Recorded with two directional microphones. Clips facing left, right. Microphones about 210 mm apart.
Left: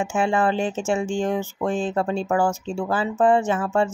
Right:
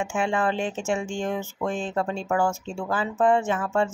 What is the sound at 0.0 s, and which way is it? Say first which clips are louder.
Speech: left 4 dB; 35° left (ahead or behind).